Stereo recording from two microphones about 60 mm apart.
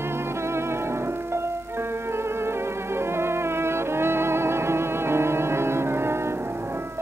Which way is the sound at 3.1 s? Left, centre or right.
Right.